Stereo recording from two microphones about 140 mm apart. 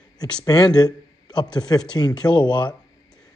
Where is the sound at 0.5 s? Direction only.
30° left (ahead or behind).